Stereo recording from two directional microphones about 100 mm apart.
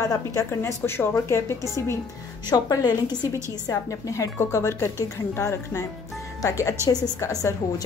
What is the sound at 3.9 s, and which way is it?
A woman's voice, 30° left (ahead or behind).